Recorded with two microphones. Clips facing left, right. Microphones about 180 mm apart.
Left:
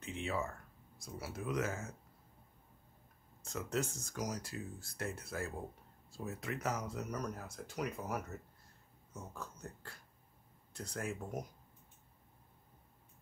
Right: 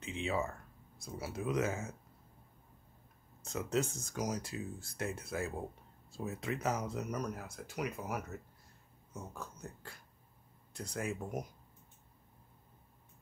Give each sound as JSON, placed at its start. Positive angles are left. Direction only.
{"t": 0.0, "sound": "a sound", "side_deg": -20}
{"t": 0.9, "sound": "speech", "side_deg": -25}
{"t": 3.4, "sound": "speech", "side_deg": -20}